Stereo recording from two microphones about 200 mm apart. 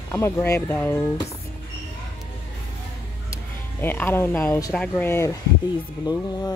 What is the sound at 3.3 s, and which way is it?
Speech, 10° left (ahead or behind).